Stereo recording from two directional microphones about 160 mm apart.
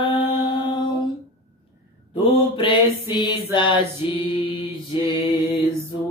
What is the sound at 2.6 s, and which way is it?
Music, 30° left (ahead or behind).